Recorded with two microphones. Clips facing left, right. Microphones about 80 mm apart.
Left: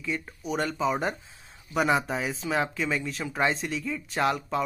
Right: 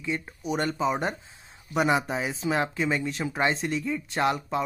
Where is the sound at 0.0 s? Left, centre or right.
Centre.